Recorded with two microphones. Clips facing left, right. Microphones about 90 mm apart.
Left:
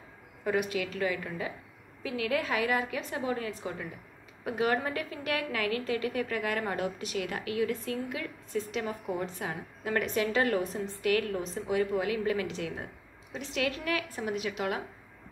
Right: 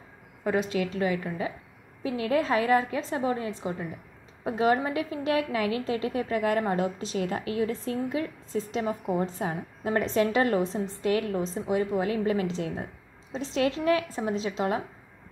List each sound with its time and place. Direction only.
0.4 s a woman's voice: 30° right (ahead or behind)